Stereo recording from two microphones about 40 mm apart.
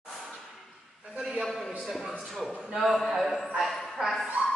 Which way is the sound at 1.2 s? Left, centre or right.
Centre.